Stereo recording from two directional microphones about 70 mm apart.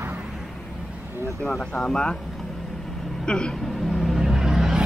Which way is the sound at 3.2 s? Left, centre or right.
Centre.